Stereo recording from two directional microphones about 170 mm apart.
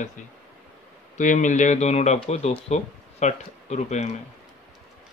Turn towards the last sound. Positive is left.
turn(degrees=45)  # may be behind; listen again after turning